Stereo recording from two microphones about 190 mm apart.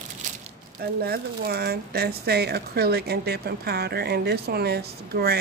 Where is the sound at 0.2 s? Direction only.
40° right (ahead or behind).